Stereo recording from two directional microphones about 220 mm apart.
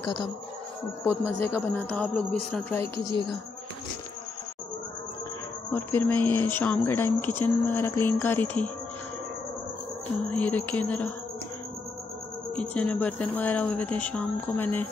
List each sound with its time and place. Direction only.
1.0 s speech: 10° left (ahead or behind)
2.8 s a woman's voice: 20° right (ahead or behind)
5.7 s speech: 10° left (ahead or behind)
10.3 s speech: 5° left (ahead or behind)
12.5 s speech: 5° left (ahead or behind)